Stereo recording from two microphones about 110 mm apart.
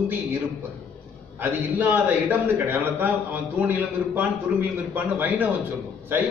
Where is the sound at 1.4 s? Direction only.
15° right (ahead or behind).